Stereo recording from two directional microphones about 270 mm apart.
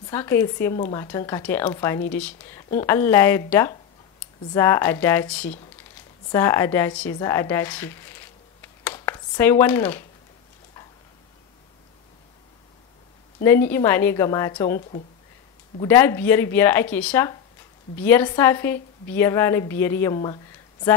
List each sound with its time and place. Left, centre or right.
0.0 s speech: centre
13.4 s speech: centre
14.8 s speech: left
15.8 s speech: centre